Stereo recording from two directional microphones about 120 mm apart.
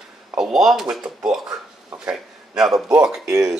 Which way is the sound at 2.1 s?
5° right (ahead or behind).